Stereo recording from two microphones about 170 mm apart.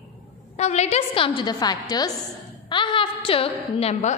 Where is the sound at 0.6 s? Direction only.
40° left (ahead or behind).